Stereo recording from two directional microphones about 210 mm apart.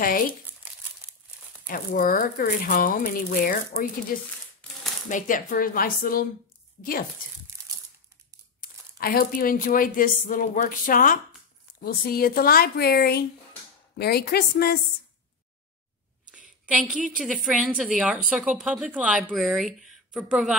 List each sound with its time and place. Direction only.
1.7 s speech: 40° left (ahead or behind)
8.5 s speech: 45° left (ahead or behind)
16.6 s a woman's voice: 5° right (ahead or behind)